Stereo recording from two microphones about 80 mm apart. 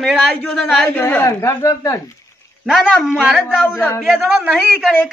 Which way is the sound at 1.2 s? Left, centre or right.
Left.